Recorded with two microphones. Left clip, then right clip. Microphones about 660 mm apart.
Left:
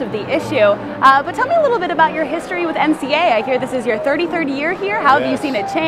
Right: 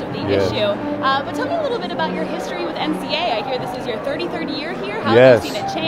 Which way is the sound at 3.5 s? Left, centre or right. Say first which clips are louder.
Left 6 dB; left.